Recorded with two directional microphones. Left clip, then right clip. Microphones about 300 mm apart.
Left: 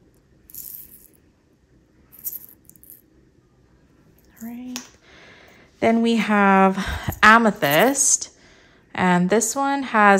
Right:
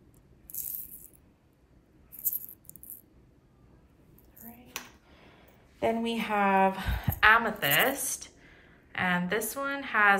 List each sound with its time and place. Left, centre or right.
5.1 s speech: left